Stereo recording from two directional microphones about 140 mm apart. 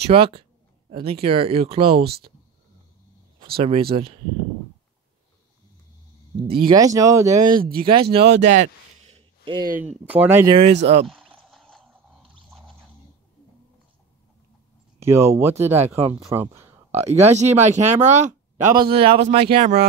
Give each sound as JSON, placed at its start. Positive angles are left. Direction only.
{"t": 0.0, "sound": "speech", "side_deg": -40}
{"t": 3.5, "sound": "speech", "side_deg": -40}
{"t": 6.6, "sound": "speech", "side_deg": -25}
{"t": 8.4, "sound": "a sound", "side_deg": -60}
{"t": 9.4, "sound": "speech", "side_deg": -35}
{"t": 9.8, "sound": "speech", "side_deg": -10}
{"t": 10.4, "sound": "speech", "side_deg": -35}
{"t": 10.7, "sound": "speech", "side_deg": -50}
{"t": 11.1, "sound": "a sound", "side_deg": 5}
{"t": 15.0, "sound": "speech", "side_deg": -20}
{"t": 17.1, "sound": "speech", "side_deg": -55}
{"t": 18.8, "sound": "speech", "side_deg": -40}